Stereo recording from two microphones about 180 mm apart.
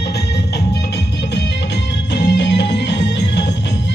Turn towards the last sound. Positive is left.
turn(degrees=75)  # may be behind; listen again after turning